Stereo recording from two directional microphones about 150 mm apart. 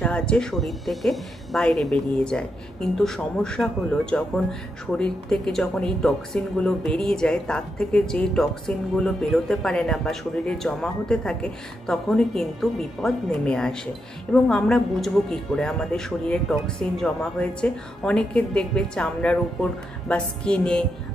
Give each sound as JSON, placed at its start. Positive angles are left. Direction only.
{"t": 0.0, "sound": "a woman's voice", "side_deg": 5}